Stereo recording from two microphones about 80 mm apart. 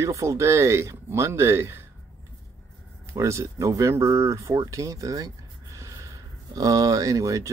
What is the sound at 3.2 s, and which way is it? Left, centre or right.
Speech, right.